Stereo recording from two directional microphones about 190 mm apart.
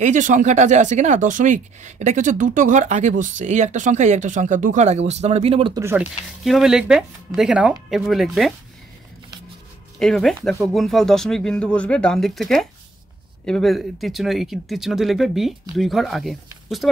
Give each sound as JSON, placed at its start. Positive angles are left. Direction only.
{"t": 0.0, "sound": "speech", "side_deg": -40}
{"t": 5.8, "sound": "speech", "side_deg": -15}
{"t": 6.4, "sound": "speech", "side_deg": 0}
{"t": 9.9, "sound": "speech", "side_deg": 0}